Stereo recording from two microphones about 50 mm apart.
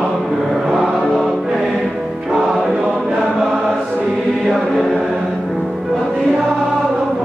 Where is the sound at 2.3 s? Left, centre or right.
Centre.